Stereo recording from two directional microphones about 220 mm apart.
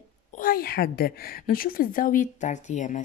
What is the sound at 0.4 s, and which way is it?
A woman's voice, 40° left (ahead or behind).